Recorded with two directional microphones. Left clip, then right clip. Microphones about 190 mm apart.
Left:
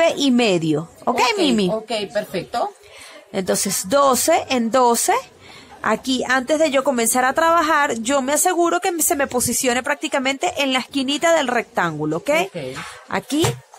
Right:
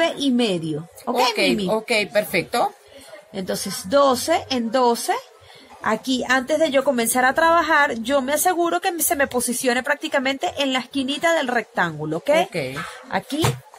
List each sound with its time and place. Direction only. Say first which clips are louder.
0.0 s speech: left 4 dB; 45° left (ahead or behind)
1.7 s a woman's voice: right 2 dB; 40° right (ahead or behind)
3.3 s a woman's voice: left 6 dB; 45° left (ahead or behind); by 13.2 s 30° left (ahead or behind)